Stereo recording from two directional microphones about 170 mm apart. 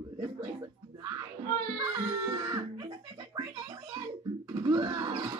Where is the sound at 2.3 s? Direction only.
20° right (ahead or behind).